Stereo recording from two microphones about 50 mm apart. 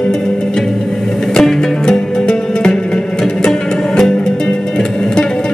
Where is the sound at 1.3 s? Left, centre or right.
Centre.